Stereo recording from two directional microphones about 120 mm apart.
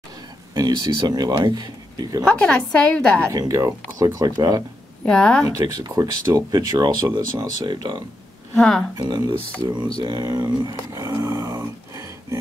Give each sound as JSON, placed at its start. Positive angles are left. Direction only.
{"t": 0.6, "sound": "speech", "side_deg": -35}
{"t": 2.2, "sound": "a woman's voice", "side_deg": 10}
{"t": 3.3, "sound": "speech", "side_deg": -25}
{"t": 5.0, "sound": "a woman's voice", "side_deg": 5}
{"t": 5.4, "sound": "speech", "side_deg": -35}
{"t": 8.5, "sound": "speech", "side_deg": 5}
{"t": 8.9, "sound": "speech", "side_deg": -35}
{"t": 10.7, "sound": "a sound", "side_deg": -25}